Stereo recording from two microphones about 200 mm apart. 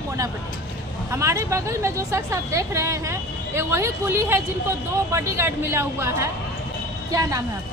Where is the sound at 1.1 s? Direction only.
15° right (ahead or behind).